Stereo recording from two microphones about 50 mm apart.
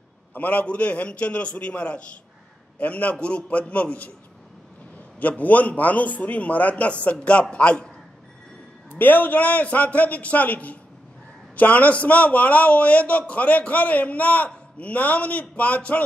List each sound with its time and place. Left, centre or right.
0.3 s a man's voice: left
5.4 s a man's voice: left
8.9 s a man's voice: left